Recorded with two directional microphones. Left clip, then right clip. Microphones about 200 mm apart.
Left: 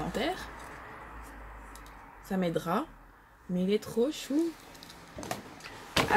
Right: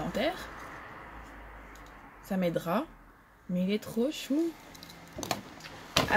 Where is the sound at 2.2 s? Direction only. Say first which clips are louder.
Even; centre (ahead or behind).